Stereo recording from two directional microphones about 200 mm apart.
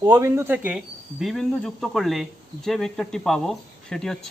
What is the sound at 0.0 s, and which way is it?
Speech, 15° right (ahead or behind).